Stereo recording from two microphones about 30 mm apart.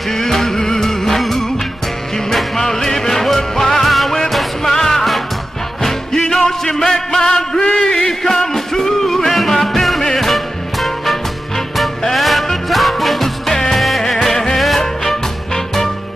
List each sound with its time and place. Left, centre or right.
0.1 s music: centre
2.6 s music: centre
6.1 s music: left
8.5 s music: centre
13.5 s music: centre